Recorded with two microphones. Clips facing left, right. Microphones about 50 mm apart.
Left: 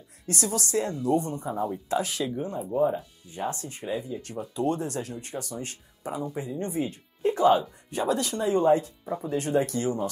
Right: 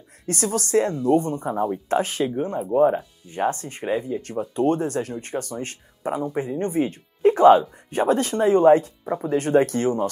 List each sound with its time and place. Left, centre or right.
0.3 s speech: right